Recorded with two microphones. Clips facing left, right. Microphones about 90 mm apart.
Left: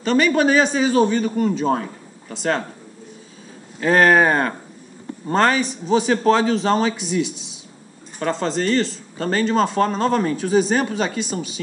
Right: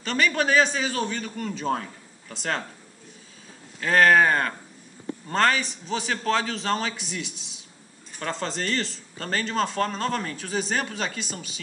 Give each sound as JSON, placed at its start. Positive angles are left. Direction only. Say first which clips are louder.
{"t": 0.0, "sound": "a man's voice", "louder": "left 8 dB", "side_deg": 10}
{"t": 3.8, "sound": "a man's voice", "louder": "left 4 dB", "side_deg": 15}